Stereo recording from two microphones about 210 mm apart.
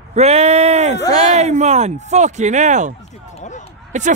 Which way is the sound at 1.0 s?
20° left (ahead or behind).